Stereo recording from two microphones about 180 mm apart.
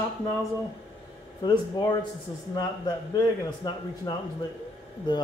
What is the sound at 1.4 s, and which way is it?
Speech, 25° left (ahead or behind).